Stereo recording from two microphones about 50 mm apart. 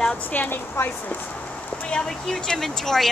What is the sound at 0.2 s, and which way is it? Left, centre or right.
Speech, left.